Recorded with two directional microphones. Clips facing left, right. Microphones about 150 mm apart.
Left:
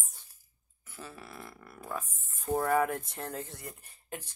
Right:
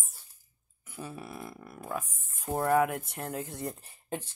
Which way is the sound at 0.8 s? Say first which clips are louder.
Right 5 dB; 20° right (ahead or behind).